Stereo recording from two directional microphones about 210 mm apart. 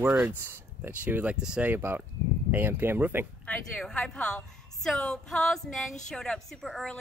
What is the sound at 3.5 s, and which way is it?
A woman's voice, 5° left (ahead or behind).